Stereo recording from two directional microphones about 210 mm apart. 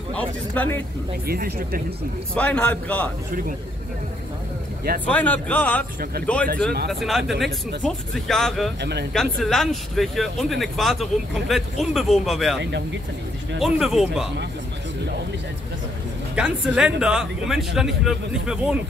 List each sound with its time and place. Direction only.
0.1 s speech: 5° left (ahead or behind)
1.2 s speech: 45° right (ahead or behind)
2.3 s speech: 5° left (ahead or behind)
5.0 s speech: 5° left (ahead or behind)
6.2 s speech: 45° right (ahead or behind)
6.9 s speech: centre (ahead or behind)
13.6 s speech: centre (ahead or behind)
16.3 s speech: 5° right (ahead or behind)